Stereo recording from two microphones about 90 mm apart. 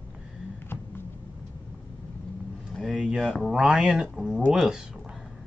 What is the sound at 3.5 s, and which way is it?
Speech, 5° right (ahead or behind).